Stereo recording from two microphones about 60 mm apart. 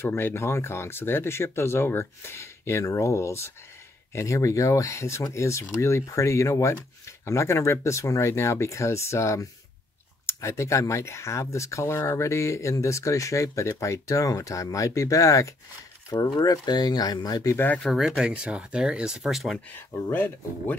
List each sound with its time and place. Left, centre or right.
0.0 s speech: left
16.1 s speech: left
17.9 s speech: centre
20.1 s speech: left